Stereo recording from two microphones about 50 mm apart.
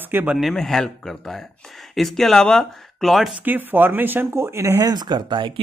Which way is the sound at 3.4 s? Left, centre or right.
Right.